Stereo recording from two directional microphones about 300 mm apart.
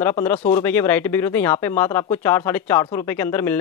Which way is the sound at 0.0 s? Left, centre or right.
Centre.